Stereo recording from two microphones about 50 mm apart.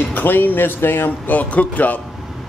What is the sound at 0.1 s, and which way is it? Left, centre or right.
Speech, left.